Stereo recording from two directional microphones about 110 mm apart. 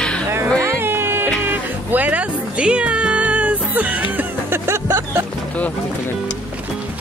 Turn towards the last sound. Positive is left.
turn(degrees=-25)  # may be behind; listen again after turning